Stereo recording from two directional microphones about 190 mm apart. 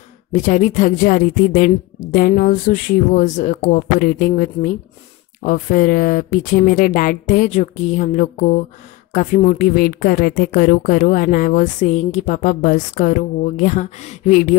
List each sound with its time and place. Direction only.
0.3 s speech: 40° left (ahead or behind)